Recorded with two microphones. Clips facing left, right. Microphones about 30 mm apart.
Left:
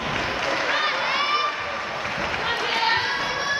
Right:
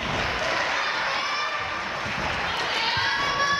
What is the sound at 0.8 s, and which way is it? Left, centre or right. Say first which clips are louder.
Run: left 3 dB; left.